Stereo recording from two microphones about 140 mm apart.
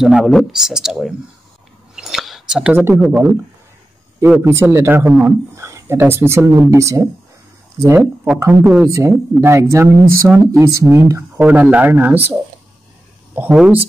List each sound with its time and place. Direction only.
0.0 s speech: centre (ahead or behind)
2.0 s a sound: centre (ahead or behind)
3.1 s speech: 15° right (ahead or behind)
4.4 s speech: 15° right (ahead or behind)
10.2 s speech: centre (ahead or behind)
10.6 s speech: 20° right (ahead or behind)
13.3 s speech: 10° right (ahead or behind)